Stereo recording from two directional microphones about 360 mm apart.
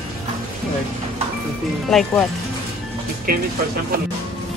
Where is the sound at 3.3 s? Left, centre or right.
Right.